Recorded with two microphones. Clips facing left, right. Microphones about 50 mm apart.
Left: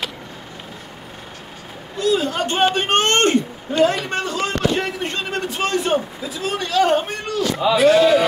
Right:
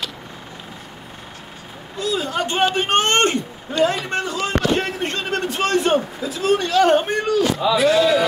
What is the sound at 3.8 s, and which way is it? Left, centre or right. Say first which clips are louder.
Speech: left 1 dB; left.